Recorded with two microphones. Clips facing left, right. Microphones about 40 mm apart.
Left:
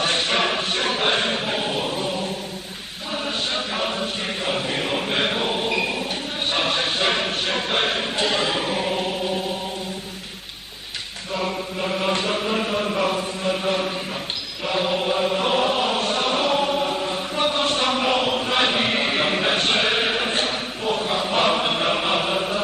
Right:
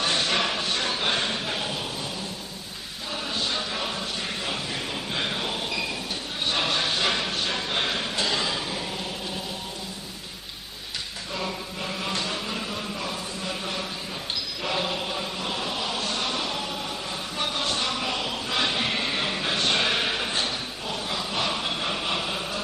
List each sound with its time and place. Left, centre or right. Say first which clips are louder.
0.0 s a sound: left 4 dB; left
3.5 s chant: left 5 dB; left
5.3 s a sound: left 7 dB; left
6.5 s a sound: left 3 dB; left
11.3 s mantra: left 7 dB; left
12.1 s chant: left 7 dB; left
14.6 s mantra: left 6 dB; centre
15.0 s chant: left 9 dB; left
19.8 s chant: left 4 dB; left